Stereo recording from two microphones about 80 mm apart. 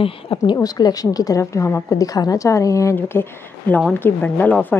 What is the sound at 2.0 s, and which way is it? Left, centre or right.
A woman's voice, left.